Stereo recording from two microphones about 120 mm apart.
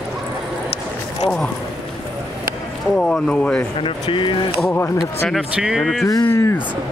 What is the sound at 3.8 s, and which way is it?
Speech, 45° left (ahead or behind).